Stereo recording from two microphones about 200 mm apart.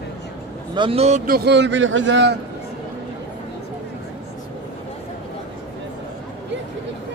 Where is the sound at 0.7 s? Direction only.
25° right (ahead or behind).